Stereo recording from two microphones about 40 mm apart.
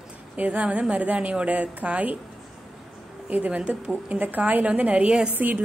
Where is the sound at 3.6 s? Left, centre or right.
Right.